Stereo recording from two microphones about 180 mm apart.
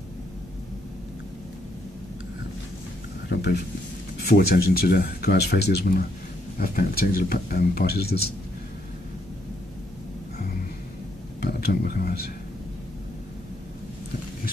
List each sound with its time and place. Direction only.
3.3 s a sound: 65° left (ahead or behind)
4.3 s speech: 60° left (ahead or behind)
6.6 s speech: 55° left (ahead or behind)
11.4 s speech: 60° left (ahead or behind)